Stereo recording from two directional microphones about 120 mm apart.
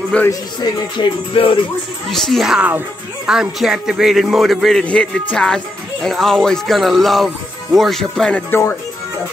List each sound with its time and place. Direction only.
0.3 s music: 35° left (ahead or behind)
2.0 s a man's voice: centre (ahead or behind)